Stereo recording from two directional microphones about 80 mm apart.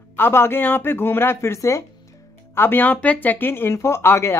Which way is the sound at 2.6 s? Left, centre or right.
Left.